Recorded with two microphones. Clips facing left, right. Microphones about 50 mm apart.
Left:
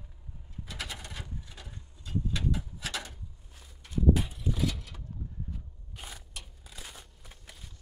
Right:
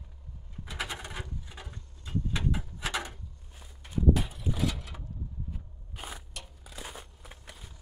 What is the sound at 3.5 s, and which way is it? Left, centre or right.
Walk, centre.